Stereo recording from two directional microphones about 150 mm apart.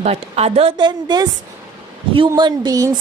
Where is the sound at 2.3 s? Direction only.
25° right (ahead or behind).